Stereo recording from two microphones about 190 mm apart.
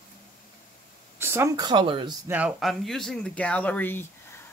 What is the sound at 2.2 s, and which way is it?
Speech, 10° right (ahead or behind).